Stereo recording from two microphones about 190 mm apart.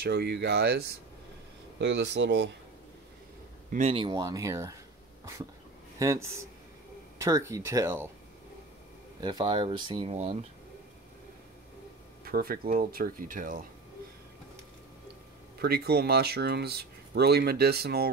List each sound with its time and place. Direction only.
0.0 s speech: 55° right (ahead or behind)
3.7 s speech: 30° right (ahead or behind); by 4.7 s 15° right (ahead or behind)
5.9 s speech: 15° right (ahead or behind)
9.2 s speech: 20° right (ahead or behind)
12.3 s speech: 50° right (ahead or behind)
15.6 s speech: 55° right (ahead or behind)